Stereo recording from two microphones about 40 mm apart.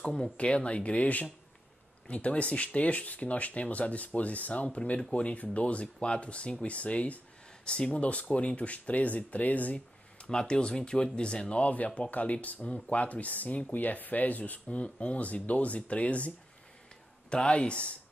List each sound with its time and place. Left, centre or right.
0.0 s speech: left
7.6 s speech: left
10.3 s speech: left
11.7 s speech: left
17.3 s speech: left